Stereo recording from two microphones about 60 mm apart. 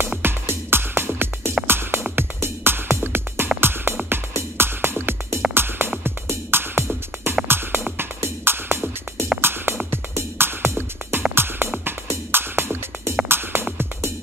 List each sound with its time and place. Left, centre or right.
0.2 s music: right